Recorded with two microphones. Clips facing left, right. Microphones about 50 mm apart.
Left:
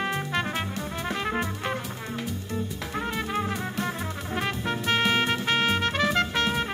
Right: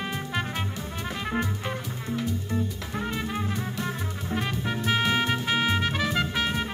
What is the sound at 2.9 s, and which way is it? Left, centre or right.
Music, centre.